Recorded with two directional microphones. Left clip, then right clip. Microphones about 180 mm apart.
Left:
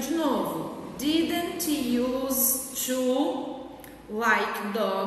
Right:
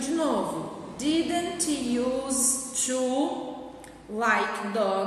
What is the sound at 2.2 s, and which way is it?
Music, 20° right (ahead or behind).